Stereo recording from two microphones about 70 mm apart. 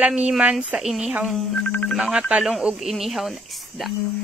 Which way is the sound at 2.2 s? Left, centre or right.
Centre.